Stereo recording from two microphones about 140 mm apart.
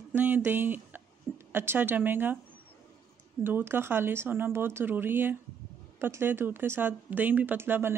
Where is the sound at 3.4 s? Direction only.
15° right (ahead or behind).